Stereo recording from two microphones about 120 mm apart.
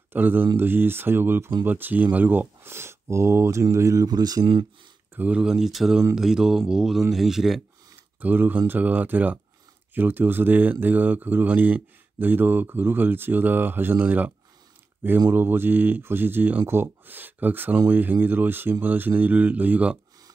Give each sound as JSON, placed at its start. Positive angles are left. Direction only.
{"t": 0.1, "sound": "speech", "side_deg": -15}
{"t": 5.1, "sound": "speech", "side_deg": -10}
{"t": 8.2, "sound": "speech", "side_deg": -15}